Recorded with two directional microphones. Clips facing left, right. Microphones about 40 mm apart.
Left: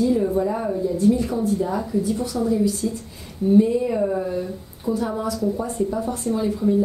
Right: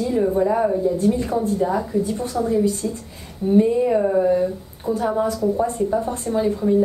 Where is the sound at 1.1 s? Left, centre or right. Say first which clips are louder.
Even; right.